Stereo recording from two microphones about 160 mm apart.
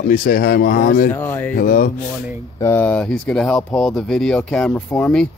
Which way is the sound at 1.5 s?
65° left (ahead or behind).